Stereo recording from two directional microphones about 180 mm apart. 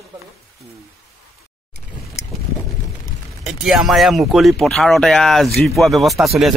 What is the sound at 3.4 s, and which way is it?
Speech, centre (ahead or behind).